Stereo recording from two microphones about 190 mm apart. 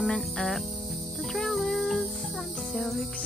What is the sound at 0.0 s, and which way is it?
Music, centre (ahead or behind).